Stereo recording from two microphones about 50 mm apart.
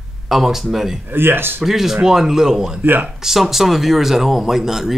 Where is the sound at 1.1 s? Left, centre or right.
Right.